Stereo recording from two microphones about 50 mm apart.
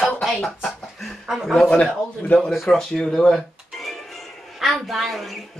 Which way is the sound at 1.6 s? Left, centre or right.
Left.